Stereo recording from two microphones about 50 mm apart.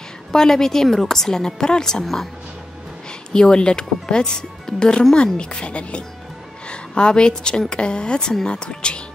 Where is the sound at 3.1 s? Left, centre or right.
Centre.